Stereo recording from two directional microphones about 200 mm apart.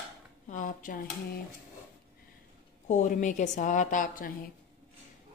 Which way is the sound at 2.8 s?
35° left (ahead or behind).